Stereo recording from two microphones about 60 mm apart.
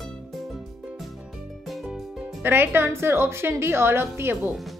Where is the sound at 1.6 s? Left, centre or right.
Centre.